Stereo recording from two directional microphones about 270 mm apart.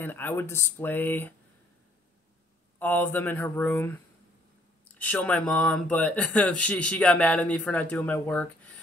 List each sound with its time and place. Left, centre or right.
0.0 s speech: centre
2.8 s speech: centre